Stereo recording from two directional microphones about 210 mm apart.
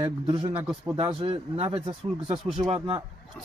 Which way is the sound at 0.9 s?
20° right (ahead or behind).